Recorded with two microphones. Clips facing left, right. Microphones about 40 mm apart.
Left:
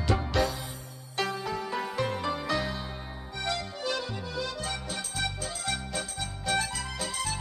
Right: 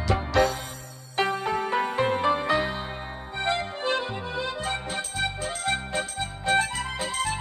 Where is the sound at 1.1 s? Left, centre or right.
Right.